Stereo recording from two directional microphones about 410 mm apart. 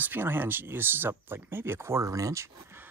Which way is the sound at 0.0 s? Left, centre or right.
Centre.